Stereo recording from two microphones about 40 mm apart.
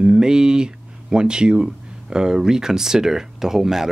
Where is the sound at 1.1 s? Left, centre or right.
Right.